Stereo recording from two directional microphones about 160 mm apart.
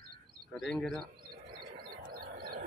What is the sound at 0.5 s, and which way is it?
Speech, centre (ahead or behind).